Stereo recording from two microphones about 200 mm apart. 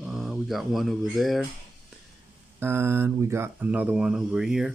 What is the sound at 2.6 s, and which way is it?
Speech, 10° right (ahead or behind).